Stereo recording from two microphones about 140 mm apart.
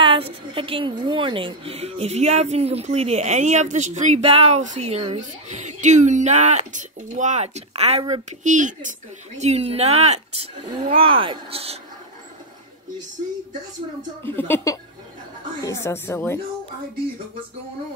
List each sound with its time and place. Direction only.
0.0 s a woman's voice: 40° right (ahead or behind)
8.1 s speech: 60° right (ahead or behind)
9.4 s a woman's voice: 50° right (ahead or behind)
14.2 s a woman's voice: 15° left (ahead or behind)